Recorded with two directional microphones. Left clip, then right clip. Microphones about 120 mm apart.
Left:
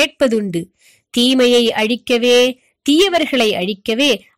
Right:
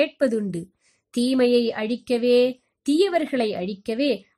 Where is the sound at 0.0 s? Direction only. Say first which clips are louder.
Left 7 dB; 30° left (ahead or behind).